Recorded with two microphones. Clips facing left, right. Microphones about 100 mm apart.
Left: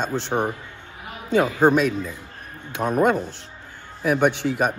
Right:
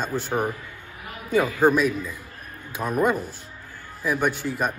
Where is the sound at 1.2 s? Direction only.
25° left (ahead or behind).